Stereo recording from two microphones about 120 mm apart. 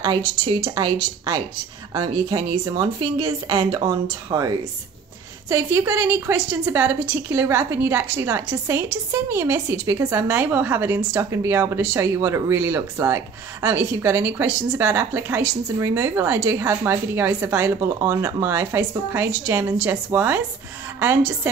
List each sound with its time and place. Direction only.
0.0 s a woman's voice: 40° right (ahead or behind)
5.5 s speech: 20° right (ahead or behind)